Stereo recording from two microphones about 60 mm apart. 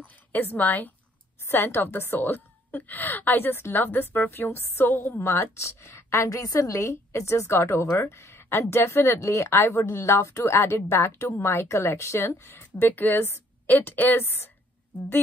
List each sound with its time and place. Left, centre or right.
0.0 s a woman's voice: left
9.6 s a woman's voice: left